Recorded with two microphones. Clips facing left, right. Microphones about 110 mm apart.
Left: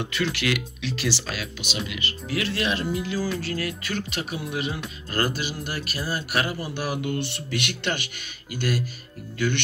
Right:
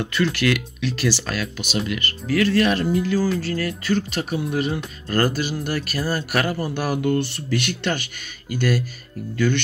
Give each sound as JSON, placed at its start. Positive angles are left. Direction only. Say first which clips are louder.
{"t": 0.0, "sound": "speech", "louder": "right 5 dB", "side_deg": -45}
{"t": 3.3, "sound": "speech", "louder": "right 5 dB", "side_deg": -35}